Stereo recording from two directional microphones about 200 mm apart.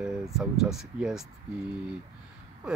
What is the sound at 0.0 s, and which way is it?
Speech, centre (ahead or behind).